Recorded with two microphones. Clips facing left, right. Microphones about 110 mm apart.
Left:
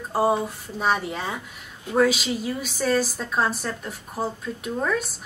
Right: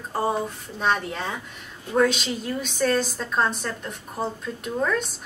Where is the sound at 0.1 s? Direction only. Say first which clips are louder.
Left 3 dB; 5° left (ahead or behind).